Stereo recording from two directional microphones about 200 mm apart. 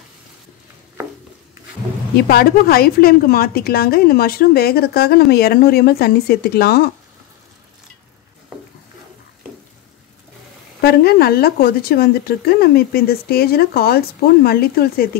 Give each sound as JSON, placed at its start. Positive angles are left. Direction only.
{"t": 2.1, "sound": "a woman's voice", "side_deg": 50}
{"t": 10.8, "sound": "a woman's voice", "side_deg": 50}